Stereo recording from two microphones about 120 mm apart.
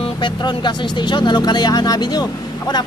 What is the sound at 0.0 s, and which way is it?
Speech, 40° left (ahead or behind).